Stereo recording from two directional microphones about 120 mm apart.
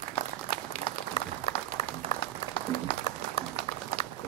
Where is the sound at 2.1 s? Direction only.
45° left (ahead or behind).